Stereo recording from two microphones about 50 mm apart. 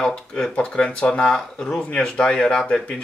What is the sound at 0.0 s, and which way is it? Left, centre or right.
Speech, centre.